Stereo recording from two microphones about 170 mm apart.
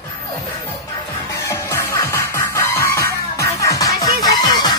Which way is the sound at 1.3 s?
15° left (ahead or behind).